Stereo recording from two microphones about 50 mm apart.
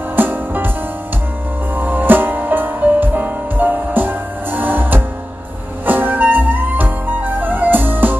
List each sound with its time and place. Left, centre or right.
0.1 s music: right
1.8 s music: right